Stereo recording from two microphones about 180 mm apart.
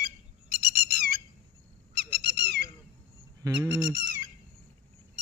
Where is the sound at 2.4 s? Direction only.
65° right (ahead or behind).